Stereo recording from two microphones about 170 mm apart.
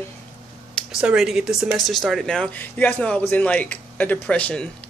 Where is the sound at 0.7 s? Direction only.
5° right (ahead or behind).